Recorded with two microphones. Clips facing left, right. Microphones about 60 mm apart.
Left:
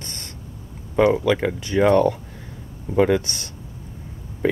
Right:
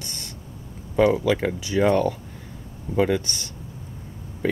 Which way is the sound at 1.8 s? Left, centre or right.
Centre.